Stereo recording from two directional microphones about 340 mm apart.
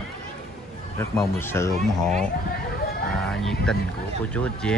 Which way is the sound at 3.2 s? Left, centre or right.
Centre.